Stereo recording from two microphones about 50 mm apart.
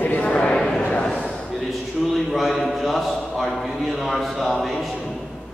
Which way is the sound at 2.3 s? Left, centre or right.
Centre.